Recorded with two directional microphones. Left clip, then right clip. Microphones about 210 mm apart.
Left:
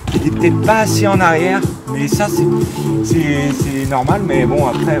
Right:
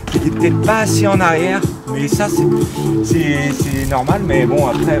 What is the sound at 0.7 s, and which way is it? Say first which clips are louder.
Speech: left 2 dB; centre (ahead or behind).